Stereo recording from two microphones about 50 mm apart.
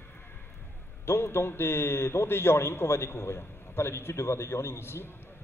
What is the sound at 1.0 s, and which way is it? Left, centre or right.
A man's voice, left.